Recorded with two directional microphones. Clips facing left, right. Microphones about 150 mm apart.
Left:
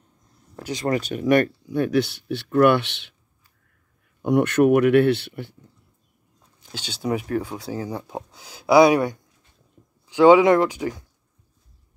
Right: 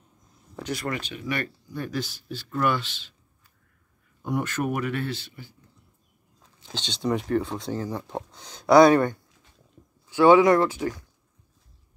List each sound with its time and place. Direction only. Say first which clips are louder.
0.8 s speech: left 8 dB; 40° left (ahead or behind)
1.2 s speech: left 16 dB; 60° left (ahead or behind)
4.2 s speech: left 10 dB; 65° left (ahead or behind)
6.7 s speech: left 1 dB; 10° left (ahead or behind)